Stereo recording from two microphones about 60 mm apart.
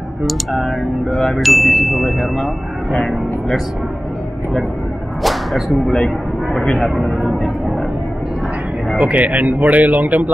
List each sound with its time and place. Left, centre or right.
0.3 s ding: centre
5.2 s whip: centre
5.9 s speech: centre
6.9 s ding: centre
8.9 s speech: right